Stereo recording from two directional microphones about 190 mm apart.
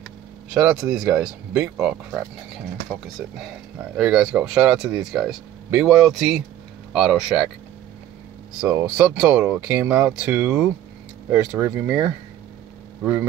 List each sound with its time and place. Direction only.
0.6 s speech: 5° right (ahead or behind)
8.5 s speech: 5° right (ahead or behind)